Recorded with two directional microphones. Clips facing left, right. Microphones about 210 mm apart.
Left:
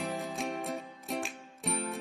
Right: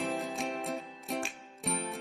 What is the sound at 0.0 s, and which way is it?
Music, centre (ahead or behind).